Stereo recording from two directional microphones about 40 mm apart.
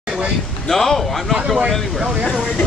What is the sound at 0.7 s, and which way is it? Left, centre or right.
Speech, centre.